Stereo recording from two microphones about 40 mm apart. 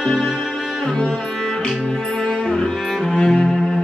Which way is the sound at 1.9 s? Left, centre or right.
Centre.